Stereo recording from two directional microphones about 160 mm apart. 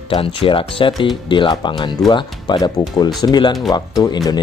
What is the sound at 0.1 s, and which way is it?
Speech, 35° left (ahead or behind).